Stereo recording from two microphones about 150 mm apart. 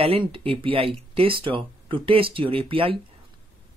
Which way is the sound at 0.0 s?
40° right (ahead or behind).